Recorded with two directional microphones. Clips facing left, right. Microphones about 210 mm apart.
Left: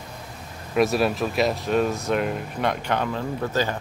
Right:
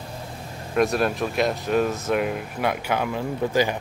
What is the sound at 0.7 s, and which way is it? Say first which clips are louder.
Speech: left 1 dB; centre (ahead or behind).